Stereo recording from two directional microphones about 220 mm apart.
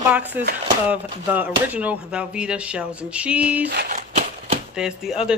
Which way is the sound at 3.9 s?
30° right (ahead or behind).